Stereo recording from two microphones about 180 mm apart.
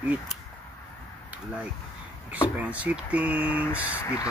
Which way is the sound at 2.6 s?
10° right (ahead or behind).